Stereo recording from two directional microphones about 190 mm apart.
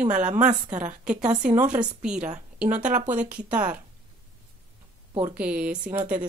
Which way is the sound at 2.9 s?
40° right (ahead or behind).